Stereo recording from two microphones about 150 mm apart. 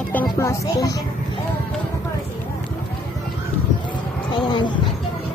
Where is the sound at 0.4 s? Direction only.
20° left (ahead or behind).